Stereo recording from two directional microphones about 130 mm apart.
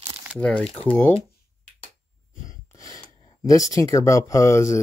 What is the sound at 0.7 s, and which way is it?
Speech, 45° left (ahead or behind).